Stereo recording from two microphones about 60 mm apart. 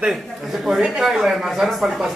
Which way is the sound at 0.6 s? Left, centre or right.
Centre.